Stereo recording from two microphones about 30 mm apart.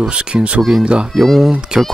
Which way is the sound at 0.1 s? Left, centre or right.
Right.